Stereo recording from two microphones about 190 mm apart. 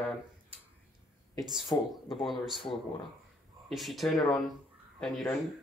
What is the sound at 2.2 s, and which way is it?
Speech, centre (ahead or behind).